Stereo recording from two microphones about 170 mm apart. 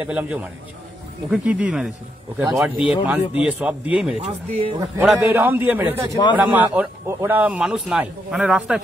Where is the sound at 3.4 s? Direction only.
5° right (ahead or behind).